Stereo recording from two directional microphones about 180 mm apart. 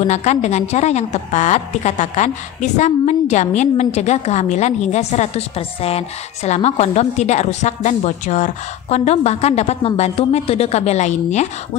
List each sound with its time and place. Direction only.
0.1 s a woman's voice: 40° left (ahead or behind)